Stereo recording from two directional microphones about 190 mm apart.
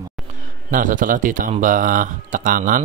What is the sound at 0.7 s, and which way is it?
A man's voice, 45° right (ahead or behind).